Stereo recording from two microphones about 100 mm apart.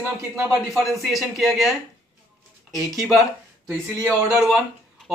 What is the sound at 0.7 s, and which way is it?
Speech, centre (ahead or behind).